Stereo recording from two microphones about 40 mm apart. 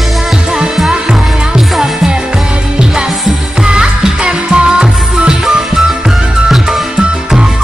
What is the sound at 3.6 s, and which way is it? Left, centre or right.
Music, right.